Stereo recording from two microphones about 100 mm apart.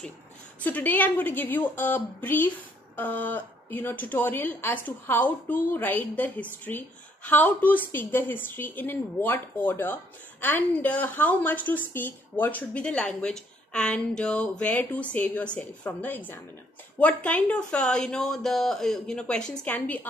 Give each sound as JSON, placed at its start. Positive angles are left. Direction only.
{"t": 0.6, "sound": "a woman's voice", "side_deg": 15}